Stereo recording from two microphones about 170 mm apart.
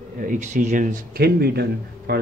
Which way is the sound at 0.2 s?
50° right (ahead or behind).